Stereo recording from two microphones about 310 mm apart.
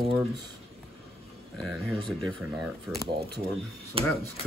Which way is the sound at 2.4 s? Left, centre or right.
Centre.